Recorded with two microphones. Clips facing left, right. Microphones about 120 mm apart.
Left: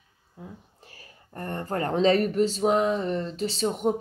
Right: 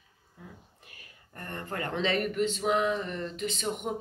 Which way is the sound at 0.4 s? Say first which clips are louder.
Left 6 dB; 25° left (ahead or behind).